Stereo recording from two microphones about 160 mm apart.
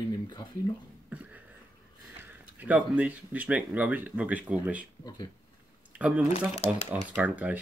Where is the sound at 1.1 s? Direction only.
10° right (ahead or behind).